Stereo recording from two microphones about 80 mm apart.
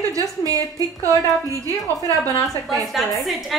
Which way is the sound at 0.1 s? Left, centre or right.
Right.